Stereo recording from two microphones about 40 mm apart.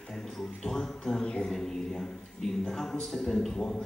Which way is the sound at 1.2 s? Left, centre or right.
Centre.